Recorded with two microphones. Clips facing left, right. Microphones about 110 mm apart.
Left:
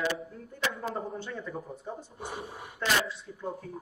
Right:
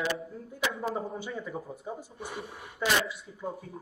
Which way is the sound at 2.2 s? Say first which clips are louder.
Left 1 dB; 25° left (ahead or behind).